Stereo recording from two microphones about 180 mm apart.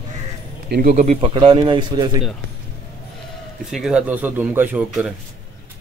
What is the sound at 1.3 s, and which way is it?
Speech, 30° right (ahead or behind).